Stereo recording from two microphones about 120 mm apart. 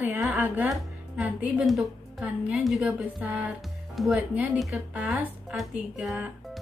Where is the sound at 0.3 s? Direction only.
15° right (ahead or behind).